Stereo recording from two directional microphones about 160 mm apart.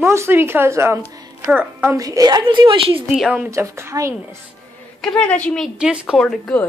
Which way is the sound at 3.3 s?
15° right (ahead or behind).